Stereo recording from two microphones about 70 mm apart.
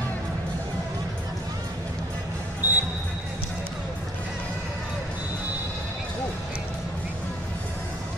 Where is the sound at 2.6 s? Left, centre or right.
Right.